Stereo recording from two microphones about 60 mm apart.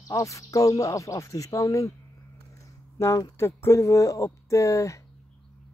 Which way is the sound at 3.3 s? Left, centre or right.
Left.